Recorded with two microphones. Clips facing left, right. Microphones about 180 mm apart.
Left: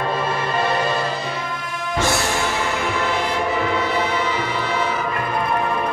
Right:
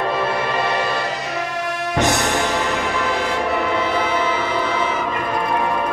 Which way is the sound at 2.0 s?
20° right (ahead or behind).